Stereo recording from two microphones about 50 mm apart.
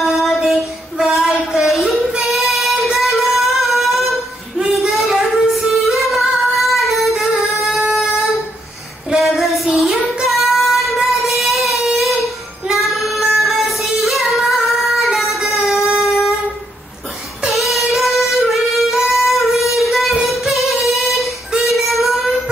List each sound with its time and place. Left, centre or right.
0.0 s a sound: centre
5.7 s singing: centre
9.2 s female singing: centre
9.8 s child singing: centre
17.9 s music: centre
21.6 s child singing: centre